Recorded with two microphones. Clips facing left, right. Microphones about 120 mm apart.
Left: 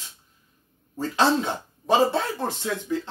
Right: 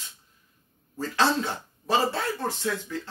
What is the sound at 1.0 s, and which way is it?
A man's voice, 20° left (ahead or behind).